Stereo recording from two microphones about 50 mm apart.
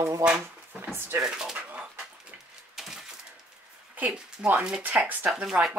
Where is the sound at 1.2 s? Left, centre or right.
Centre.